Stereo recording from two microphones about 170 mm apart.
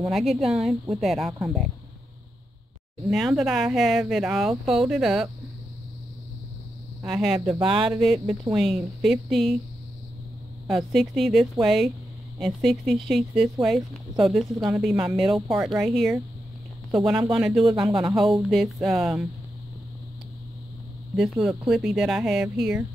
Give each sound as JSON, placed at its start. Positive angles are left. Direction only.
{"t": 0.1, "sound": "speech", "side_deg": 0}
{"t": 3.1, "sound": "speech", "side_deg": 0}
{"t": 7.0, "sound": "speech", "side_deg": -5}
{"t": 7.4, "sound": "speech", "side_deg": -25}
{"t": 8.0, "sound": "speech", "side_deg": -5}
{"t": 10.9, "sound": "speech", "side_deg": 0}
{"t": 17.6, "sound": "speech", "side_deg": -20}
{"t": 18.1, "sound": "speech", "side_deg": 0}
{"t": 21.2, "sound": "speech", "side_deg": -5}